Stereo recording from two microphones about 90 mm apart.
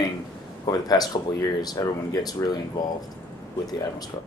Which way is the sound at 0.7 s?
45° left (ahead or behind).